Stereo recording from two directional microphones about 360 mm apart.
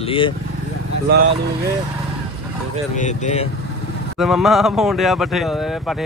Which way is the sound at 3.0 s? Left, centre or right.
Centre.